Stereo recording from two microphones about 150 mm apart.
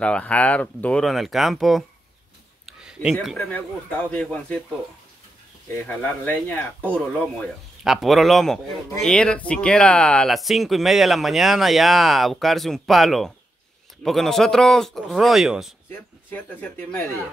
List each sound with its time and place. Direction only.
0.0 s speech: 5° left (ahead or behind)
2.6 s a sound: 5° right (ahead or behind)
3.4 s speech: 10° left (ahead or behind)
5.9 s speech: 10° left (ahead or behind)
16.3 s speech: 10° left (ahead or behind)